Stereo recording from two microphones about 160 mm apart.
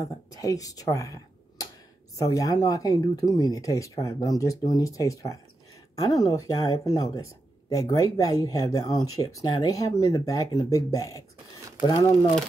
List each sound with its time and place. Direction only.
0.0 s speech: 20° left (ahead or behind)